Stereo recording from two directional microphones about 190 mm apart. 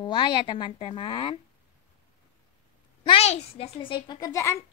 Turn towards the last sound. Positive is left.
turn(degrees=15)  # may be behind; listen again after turning